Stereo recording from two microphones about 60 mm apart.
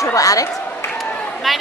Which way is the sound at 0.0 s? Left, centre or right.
Left.